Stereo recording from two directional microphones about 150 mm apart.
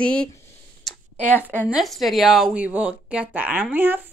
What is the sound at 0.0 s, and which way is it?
Speech, 5° left (ahead or behind).